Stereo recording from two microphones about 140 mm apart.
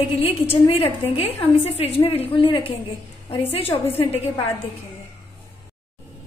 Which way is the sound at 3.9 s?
45° left (ahead or behind).